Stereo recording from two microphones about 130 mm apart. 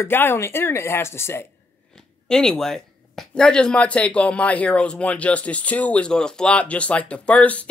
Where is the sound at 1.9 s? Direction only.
5° left (ahead or behind).